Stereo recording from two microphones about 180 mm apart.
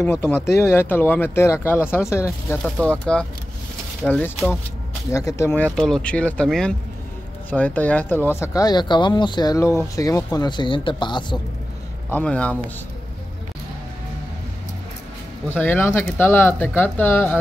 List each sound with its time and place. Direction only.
0.0 s speech: 15° left (ahead or behind)
2.6 s speech: 5° left (ahead or behind); by 11.3 s 25° left (ahead or behind)
12.1 s speech: 5° left (ahead or behind)
15.5 s speech: 10° left (ahead or behind)